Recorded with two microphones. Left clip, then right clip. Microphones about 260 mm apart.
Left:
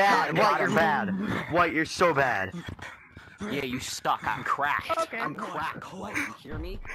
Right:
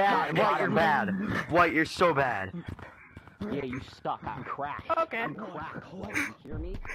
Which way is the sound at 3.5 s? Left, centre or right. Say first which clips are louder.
Left 4 dB; left.